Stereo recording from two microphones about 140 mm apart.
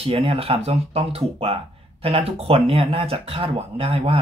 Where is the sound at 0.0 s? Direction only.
45° right (ahead or behind).